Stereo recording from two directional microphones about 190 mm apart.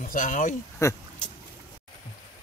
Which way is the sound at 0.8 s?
15° left (ahead or behind).